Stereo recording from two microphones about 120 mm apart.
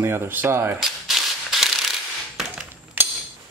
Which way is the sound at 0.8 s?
Centre (ahead or behind).